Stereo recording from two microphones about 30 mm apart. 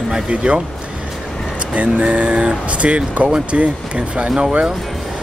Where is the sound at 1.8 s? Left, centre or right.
Right.